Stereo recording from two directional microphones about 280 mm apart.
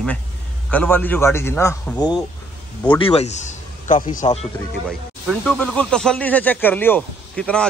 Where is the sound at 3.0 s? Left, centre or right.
Left.